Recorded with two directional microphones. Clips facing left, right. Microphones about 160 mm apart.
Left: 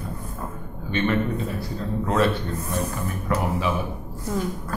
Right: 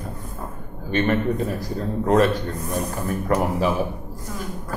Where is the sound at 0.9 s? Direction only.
45° right (ahead or behind).